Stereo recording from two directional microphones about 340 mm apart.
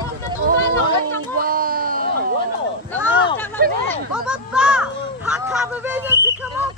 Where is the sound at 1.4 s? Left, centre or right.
Right.